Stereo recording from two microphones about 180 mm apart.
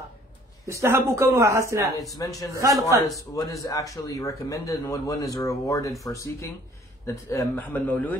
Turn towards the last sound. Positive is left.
turn(degrees=10)  # may be behind; listen again after turning